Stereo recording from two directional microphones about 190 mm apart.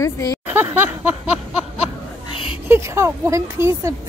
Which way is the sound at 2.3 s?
25° left (ahead or behind).